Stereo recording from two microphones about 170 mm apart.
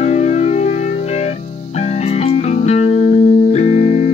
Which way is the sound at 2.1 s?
40° left (ahead or behind).